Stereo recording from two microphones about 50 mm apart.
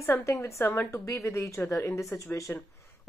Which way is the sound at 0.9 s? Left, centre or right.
Left.